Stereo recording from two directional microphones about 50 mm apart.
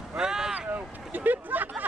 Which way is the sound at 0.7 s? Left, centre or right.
Right.